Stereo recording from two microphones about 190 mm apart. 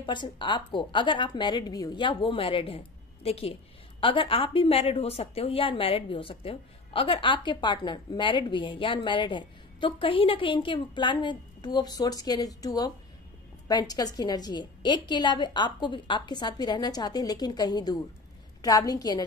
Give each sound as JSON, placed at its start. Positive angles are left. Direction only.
{"t": 0.0, "sound": "a woman's voice", "side_deg": 25}